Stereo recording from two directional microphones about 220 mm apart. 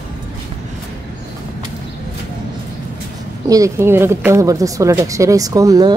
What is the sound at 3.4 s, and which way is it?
Speech, 15° right (ahead or behind).